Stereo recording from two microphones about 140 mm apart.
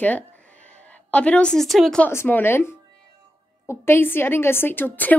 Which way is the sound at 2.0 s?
15° left (ahead or behind).